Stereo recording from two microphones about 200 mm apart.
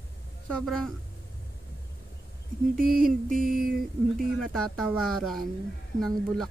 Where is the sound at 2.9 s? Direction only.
45° right (ahead or behind).